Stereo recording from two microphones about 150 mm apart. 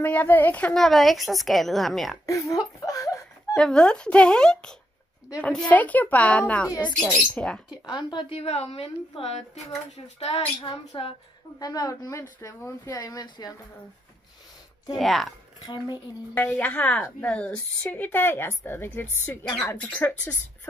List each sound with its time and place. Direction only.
0.0 s a woman's voice: 10° left (ahead or behind)
2.2 s speech: 20° left (ahead or behind)
2.8 s a sound: 20° left (ahead or behind)
3.5 s a woman's voice: 5° left (ahead or behind)
7.7 s a woman's voice: 30° left (ahead or behind); by 10.1 s 50° left (ahead or behind)
10.1 s a woman's voice: 35° left (ahead or behind)
11.6 s speech: 25° left (ahead or behind)
15.0 s a woman's voice: centre (ahead or behind)
15.6 s a woman's voice: 30° left (ahead or behind)
16.3 s a woman's voice: 10° left (ahead or behind)